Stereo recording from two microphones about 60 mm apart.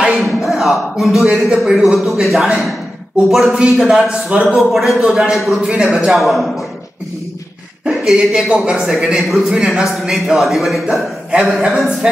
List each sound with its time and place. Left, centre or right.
0.1 s a man's voice: centre
4.3 s a man's voice: centre
4.6 s a man's voice: centre
5.7 s a man's voice: centre
6.1 s a man's voice: centre
7.9 s a man's voice: centre